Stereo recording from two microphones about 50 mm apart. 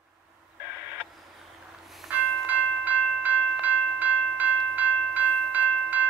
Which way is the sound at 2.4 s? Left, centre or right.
Right.